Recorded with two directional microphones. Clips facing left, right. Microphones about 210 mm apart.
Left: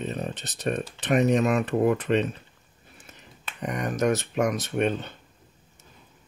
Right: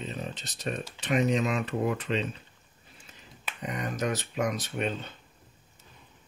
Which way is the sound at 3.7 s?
65° left (ahead or behind).